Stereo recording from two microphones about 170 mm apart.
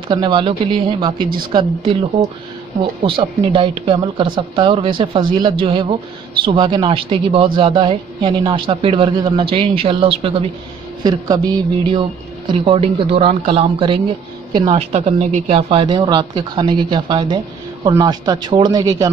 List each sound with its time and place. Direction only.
0.1 s a man's voice: 30° right (ahead or behind)
14.7 s a man's voice: 40° right (ahead or behind); by 19.0 s 20° right (ahead or behind)